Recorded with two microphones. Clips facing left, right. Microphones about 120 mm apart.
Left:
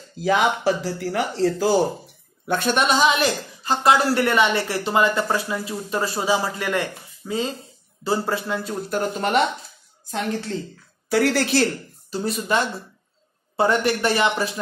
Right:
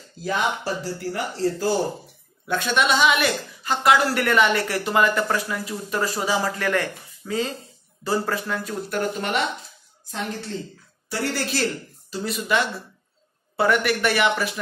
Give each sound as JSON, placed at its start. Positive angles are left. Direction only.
{"t": 0.2, "sound": "speech", "side_deg": 75}
{"t": 1.1, "sound": "speech", "side_deg": 60}
{"t": 2.4, "sound": "a woman's voice", "side_deg": 45}
{"t": 9.2, "sound": "speech", "side_deg": 40}
{"t": 11.1, "sound": "a woman's voice", "side_deg": 85}
{"t": 12.1, "sound": "a woman's voice", "side_deg": 40}